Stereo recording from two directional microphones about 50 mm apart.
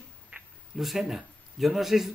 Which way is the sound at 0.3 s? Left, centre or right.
Right.